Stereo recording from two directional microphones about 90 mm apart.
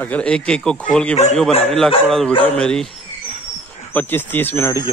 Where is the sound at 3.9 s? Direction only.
20° left (ahead or behind).